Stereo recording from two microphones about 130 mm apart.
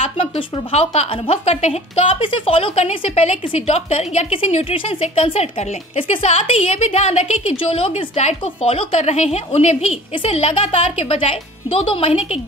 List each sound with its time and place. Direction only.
0.0 s a woman's voice: 50° left (ahead or behind)